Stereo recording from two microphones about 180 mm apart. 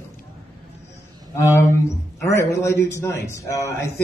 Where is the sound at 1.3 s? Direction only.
15° left (ahead or behind).